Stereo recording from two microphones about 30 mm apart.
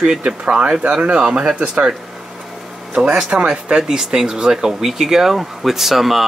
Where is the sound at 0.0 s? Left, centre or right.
Right.